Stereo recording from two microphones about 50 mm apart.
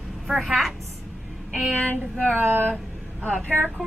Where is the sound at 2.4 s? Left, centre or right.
Right.